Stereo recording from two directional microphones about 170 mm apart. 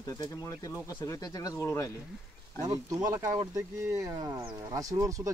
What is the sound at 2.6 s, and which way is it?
Speech, 20° right (ahead or behind).